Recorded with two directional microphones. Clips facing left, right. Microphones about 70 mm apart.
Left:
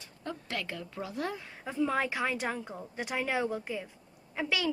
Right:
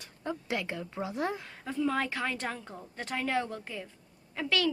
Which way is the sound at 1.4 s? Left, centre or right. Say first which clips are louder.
Even; centre.